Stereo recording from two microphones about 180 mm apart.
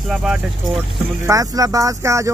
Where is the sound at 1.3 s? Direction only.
20° right (ahead or behind).